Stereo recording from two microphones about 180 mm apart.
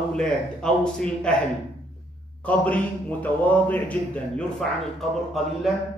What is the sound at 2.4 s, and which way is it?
A man's voice, 5° left (ahead or behind).